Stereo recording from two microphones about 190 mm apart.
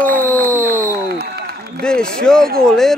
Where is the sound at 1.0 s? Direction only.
55° right (ahead or behind).